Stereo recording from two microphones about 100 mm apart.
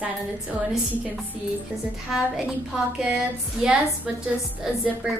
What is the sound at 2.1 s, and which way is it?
Speech, 5° right (ahead or behind).